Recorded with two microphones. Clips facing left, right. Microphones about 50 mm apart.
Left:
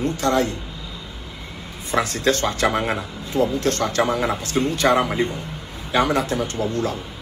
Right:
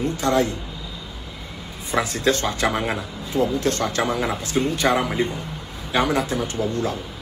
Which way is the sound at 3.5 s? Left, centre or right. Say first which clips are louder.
Left 2 dB; right.